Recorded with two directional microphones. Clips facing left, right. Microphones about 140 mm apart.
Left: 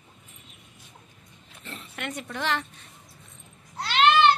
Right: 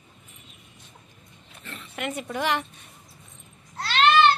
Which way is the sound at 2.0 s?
5° right (ahead or behind).